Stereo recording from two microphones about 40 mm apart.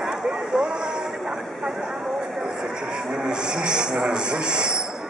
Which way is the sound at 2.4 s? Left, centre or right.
Centre.